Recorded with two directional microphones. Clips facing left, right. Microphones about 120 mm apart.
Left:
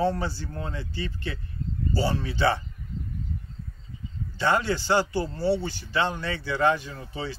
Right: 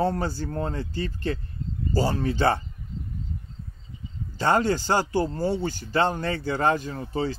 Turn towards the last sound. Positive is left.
turn(degrees=-45)  # may be behind; listen again after turning